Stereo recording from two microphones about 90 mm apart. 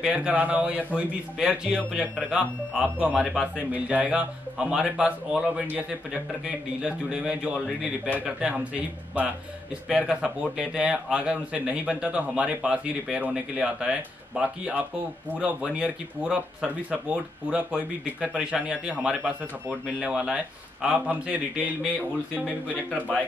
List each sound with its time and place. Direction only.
0.0 s a man's voice: 10° right (ahead or behind)
8.1 s speech: 15° right (ahead or behind)
22.7 s speech: 15° left (ahead or behind)